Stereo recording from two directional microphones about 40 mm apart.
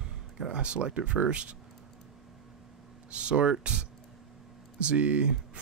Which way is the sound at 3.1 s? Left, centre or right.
Right.